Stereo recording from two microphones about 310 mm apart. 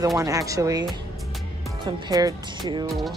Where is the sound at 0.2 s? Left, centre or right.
Centre.